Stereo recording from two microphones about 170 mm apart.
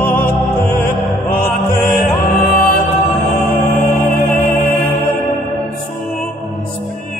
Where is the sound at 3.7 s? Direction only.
10° left (ahead or behind).